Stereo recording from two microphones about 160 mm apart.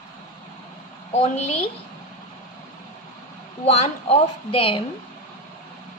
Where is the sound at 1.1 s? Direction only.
40° left (ahead or behind).